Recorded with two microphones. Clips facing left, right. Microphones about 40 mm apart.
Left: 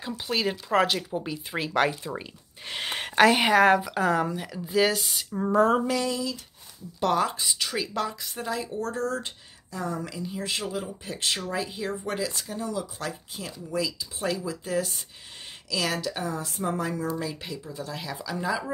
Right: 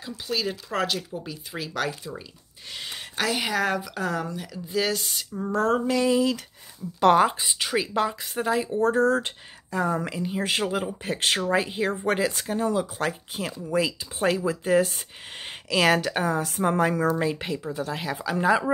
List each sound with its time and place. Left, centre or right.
0.0 s a woman's voice: centre
2.7 s speech: left
3.3 s a woman's voice: centre
5.3 s a woman's voice: centre
7.2 s a woman's voice: right
15.7 s a woman's voice: right
17.2 s a woman's voice: right